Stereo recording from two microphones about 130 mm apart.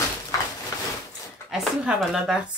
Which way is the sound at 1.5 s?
5° right (ahead or behind).